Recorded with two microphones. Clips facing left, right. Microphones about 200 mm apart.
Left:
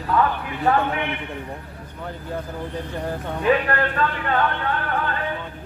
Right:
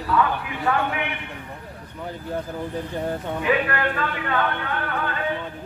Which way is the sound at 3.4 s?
40° left (ahead or behind).